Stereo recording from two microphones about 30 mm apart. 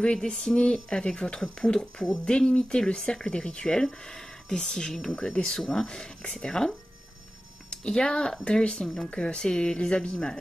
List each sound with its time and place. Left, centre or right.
0.0 s speech: left
8.8 s speech: centre
9.1 s speech: left